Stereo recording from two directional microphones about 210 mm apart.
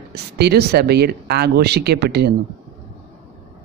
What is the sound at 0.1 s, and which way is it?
Speech, 50° right (ahead or behind).